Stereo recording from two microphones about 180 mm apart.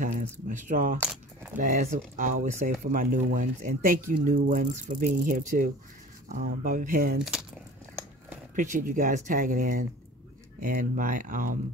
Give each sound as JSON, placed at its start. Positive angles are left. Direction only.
{"t": 0.0, "sound": "speech", "side_deg": -45}
{"t": 8.5, "sound": "speech", "side_deg": -45}